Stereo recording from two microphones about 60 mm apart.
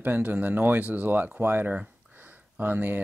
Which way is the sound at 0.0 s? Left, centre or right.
Right.